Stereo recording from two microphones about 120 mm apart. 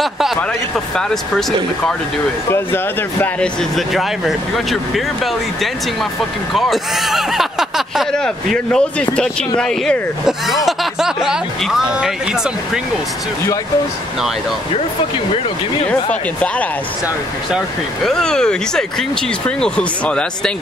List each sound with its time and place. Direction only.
2.5 s speech: 20° left (ahead or behind)
3.3 s speech: centre (ahead or behind)
15.9 s speech: 10° left (ahead or behind)
17.5 s speech: centre (ahead or behind)